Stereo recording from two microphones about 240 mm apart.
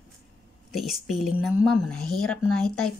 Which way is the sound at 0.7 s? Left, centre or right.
Centre.